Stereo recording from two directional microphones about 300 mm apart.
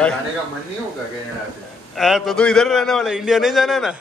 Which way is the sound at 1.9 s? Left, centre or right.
Centre.